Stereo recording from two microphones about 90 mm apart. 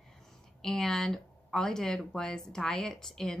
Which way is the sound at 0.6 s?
5° left (ahead or behind).